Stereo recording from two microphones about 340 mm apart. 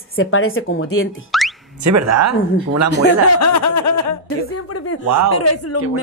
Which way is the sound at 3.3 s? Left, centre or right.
Left.